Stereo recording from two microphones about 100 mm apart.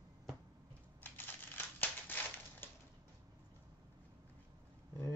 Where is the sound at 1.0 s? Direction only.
20° left (ahead or behind).